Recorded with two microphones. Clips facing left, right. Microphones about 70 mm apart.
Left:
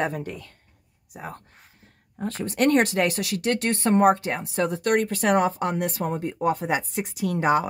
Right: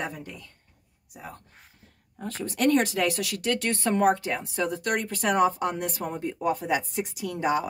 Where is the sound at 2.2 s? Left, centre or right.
Left.